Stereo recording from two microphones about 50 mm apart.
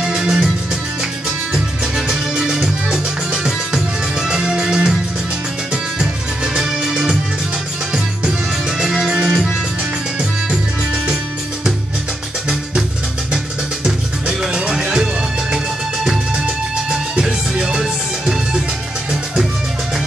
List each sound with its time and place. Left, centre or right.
0.0 s music: centre
1.5 s music: centre
13.8 s music: centre